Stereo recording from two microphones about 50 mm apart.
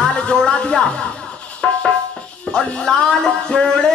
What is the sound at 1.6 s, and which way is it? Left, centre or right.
Music, centre.